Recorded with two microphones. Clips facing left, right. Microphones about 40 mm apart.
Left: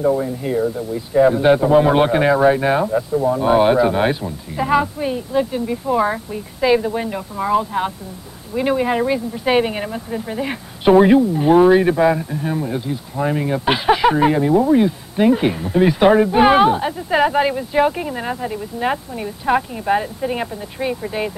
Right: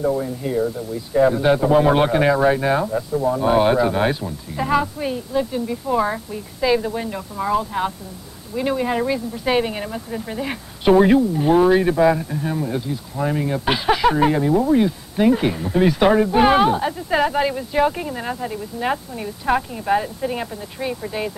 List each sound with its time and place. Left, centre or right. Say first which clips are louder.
0.0 s speech: left 3 dB; centre